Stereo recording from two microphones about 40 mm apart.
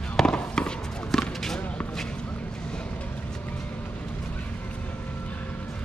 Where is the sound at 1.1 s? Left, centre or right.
Centre.